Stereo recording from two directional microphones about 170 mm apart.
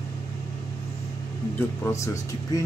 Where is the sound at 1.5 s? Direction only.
15° left (ahead or behind).